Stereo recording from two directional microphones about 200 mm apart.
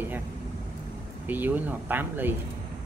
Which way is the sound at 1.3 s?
10° right (ahead or behind).